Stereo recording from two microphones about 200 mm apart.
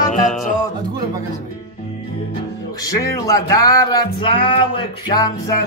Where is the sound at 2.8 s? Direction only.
15° left (ahead or behind).